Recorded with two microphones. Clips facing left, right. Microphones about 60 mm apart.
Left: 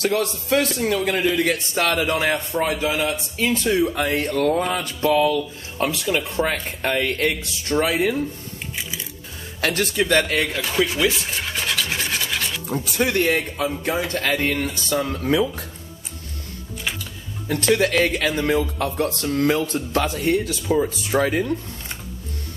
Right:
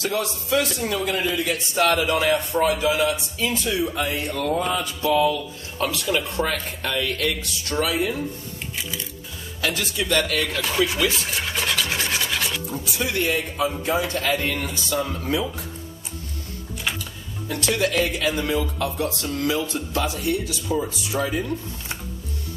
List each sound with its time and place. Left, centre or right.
0.0 s speech: left
1.9 s speech: left
6.1 s speech: left
6.5 s speech: left
9.6 s speech: left
10.6 s speech: centre
11.1 s rub: centre
12.6 s speech: left
17.5 s speech: left
20.6 s speech: left